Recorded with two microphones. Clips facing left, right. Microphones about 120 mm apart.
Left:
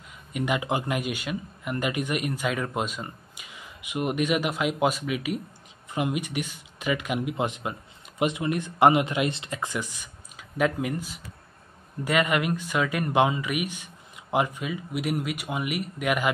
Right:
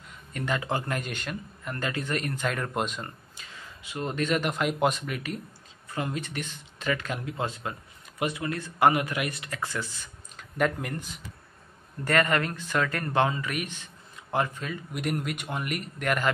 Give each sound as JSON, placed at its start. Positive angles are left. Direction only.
{"t": 0.3, "sound": "speech", "side_deg": 15}
{"t": 10.6, "sound": "speech", "side_deg": 5}